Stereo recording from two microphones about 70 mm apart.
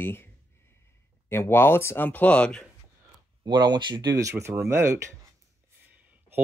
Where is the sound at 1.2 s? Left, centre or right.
Left; by 2.6 s centre.